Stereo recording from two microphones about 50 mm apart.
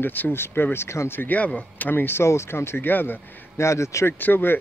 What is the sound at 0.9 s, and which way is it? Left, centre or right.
Speech, left.